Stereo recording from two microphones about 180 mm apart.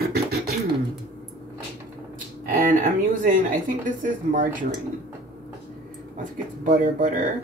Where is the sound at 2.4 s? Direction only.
45° right (ahead or behind).